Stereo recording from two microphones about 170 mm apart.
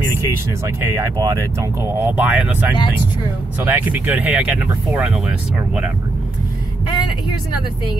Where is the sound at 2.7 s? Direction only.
25° left (ahead or behind).